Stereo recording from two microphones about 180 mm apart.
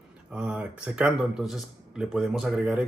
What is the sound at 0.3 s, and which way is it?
Speech, 5° right (ahead or behind).